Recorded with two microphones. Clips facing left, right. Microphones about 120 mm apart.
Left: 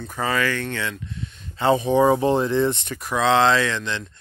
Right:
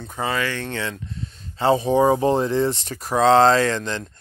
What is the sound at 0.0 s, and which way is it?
Speech, 25° right (ahead or behind).